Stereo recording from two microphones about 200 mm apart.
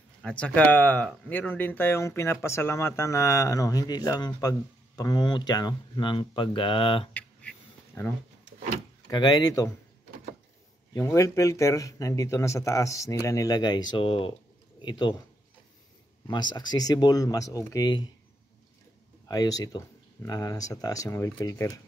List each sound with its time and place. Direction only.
0.2 s speech: 5° left (ahead or behind); by 7.1 s 25° left (ahead or behind)
7.2 s a sound: 10° left (ahead or behind)
9.0 s speech: 20° left (ahead or behind)
10.9 s speech: 15° left (ahead or behind)
16.3 s speech: 20° left (ahead or behind)
19.2 s speech: 20° left (ahead or behind)